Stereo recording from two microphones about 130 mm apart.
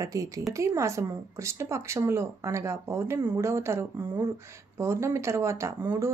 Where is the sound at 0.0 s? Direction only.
25° right (ahead or behind).